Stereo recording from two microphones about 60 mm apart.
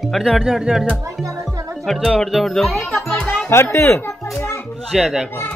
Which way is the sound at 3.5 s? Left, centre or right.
Left.